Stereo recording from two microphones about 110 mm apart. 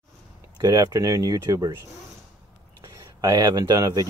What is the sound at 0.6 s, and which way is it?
Speech, 30° right (ahead or behind).